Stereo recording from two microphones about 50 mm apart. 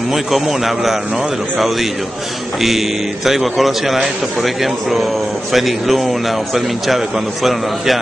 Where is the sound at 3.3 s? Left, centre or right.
Centre.